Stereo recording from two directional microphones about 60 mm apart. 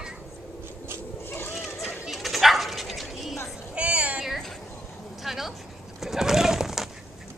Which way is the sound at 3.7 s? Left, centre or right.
Right.